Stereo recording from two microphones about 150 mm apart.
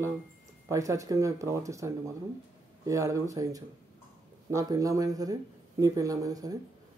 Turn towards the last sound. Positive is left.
turn(degrees=-25)  # may be behind; listen again after turning